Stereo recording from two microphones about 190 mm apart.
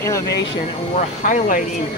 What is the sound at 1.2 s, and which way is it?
Speech, 45° left (ahead or behind).